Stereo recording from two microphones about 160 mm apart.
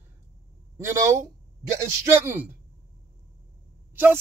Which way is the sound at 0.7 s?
15° right (ahead or behind).